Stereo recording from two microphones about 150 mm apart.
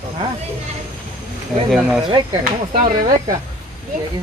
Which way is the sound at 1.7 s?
5° right (ahead or behind).